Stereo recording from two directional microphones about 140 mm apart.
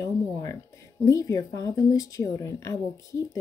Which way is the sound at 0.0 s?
25° left (ahead or behind).